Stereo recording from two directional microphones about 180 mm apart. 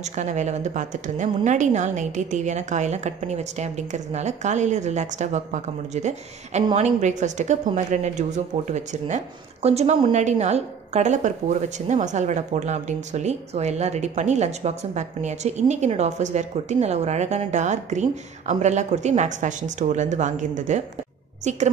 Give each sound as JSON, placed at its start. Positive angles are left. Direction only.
{"t": 0.0, "sound": "a woman's voice", "side_deg": -40}